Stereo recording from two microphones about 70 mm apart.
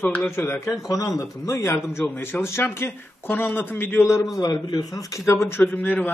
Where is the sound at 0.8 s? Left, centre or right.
Left.